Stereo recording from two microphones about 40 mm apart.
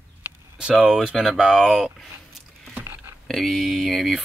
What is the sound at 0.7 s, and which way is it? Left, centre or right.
Speech, centre.